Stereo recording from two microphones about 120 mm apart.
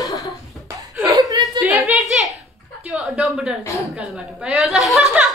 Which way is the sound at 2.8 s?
5° right (ahead or behind).